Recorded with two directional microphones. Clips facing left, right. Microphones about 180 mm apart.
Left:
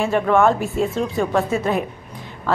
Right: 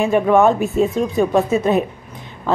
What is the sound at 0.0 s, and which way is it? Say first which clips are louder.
A woman's voice: right 3 dB; 15° right (ahead or behind).